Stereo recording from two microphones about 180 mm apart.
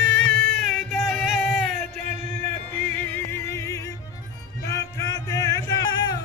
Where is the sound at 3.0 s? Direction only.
10° left (ahead or behind).